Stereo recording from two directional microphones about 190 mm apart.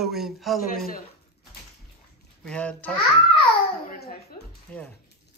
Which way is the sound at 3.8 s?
55° left (ahead or behind).